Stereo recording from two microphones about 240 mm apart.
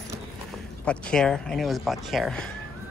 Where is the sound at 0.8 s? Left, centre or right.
Centre.